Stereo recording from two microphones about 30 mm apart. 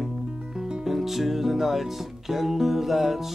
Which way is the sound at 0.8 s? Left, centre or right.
Centre.